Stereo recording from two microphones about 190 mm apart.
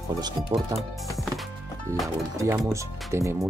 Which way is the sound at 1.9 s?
15° right (ahead or behind).